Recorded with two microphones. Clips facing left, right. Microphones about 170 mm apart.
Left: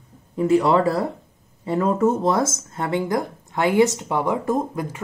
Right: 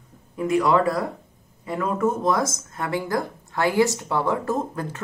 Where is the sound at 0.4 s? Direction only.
30° left (ahead or behind).